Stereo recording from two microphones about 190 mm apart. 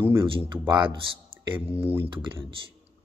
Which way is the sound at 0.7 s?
25° right (ahead or behind).